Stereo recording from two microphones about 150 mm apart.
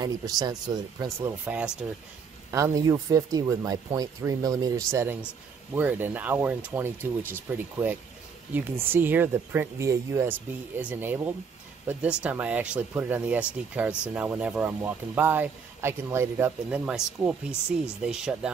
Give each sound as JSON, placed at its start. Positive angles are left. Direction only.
{"t": 0.0, "sound": "speech", "side_deg": -25}
{"t": 1.4, "sound": "speech", "side_deg": -10}
{"t": 2.5, "sound": "speech", "side_deg": -20}